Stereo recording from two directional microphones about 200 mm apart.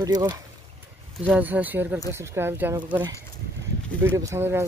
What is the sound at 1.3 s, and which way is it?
Speech, 10° right (ahead or behind).